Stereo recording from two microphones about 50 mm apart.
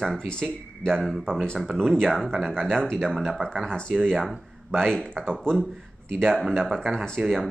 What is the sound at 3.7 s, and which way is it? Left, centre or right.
Speech, centre.